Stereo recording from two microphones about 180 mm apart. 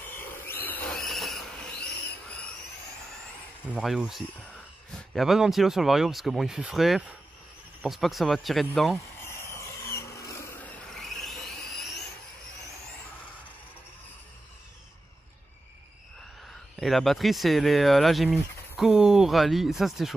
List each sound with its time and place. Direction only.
0.0 s vehicle: 10° left (ahead or behind)
3.6 s speech: 5° right (ahead or behind)
9.2 s a sound: 15° left (ahead or behind)
10.9 s vehicle: centre (ahead or behind)
16.7 s speech: centre (ahead or behind)